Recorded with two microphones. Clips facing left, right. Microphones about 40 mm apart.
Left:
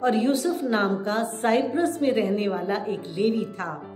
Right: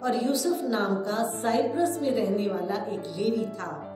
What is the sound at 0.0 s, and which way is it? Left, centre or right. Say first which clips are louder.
A woman's voice: left 4 dB; left.